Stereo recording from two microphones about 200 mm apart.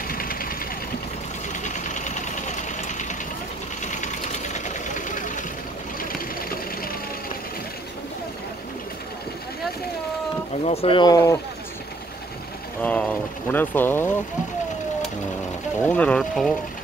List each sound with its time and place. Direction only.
0.1 s vehicle: 45° left (ahead or behind)
1.5 s engine: 40° left (ahead or behind)
3.8 s vehicle: 35° left (ahead or behind)
10.6 s speech: 30° left (ahead or behind)
12.8 s speech: 10° left (ahead or behind)
15.9 s speech: 5° left (ahead or behind)